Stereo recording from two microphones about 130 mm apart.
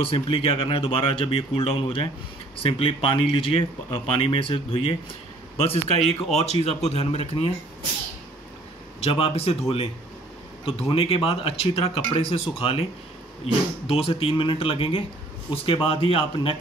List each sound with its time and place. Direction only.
0.0 s speech: 45° left (ahead or behind)
9.0 s speech: 50° left (ahead or behind)
13.8 s speech: 45° left (ahead or behind)